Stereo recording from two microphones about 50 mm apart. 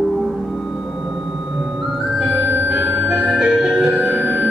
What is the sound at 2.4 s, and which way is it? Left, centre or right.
Music, right.